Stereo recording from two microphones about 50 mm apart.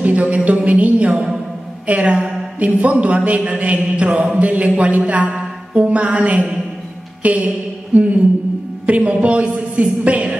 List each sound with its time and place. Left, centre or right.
0.0 s speech: right
5.3 s music: right
7.2 s a sound: right
8.8 s speech: right